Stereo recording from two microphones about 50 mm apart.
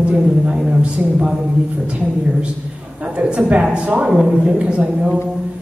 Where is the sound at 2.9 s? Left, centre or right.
Right.